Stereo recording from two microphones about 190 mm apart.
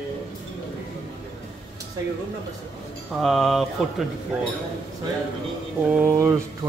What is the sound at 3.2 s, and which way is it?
Speech, centre (ahead or behind).